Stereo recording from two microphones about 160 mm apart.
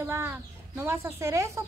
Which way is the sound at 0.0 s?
15° right (ahead or behind).